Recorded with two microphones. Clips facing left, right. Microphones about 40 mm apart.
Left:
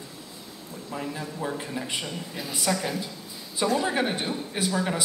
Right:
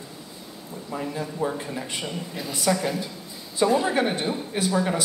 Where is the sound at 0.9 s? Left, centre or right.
Centre.